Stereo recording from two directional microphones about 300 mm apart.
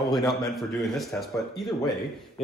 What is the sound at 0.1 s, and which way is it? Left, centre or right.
Speech, centre.